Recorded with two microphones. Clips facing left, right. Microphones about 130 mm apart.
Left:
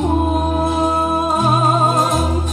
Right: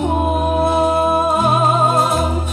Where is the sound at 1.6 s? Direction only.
5° right (ahead or behind).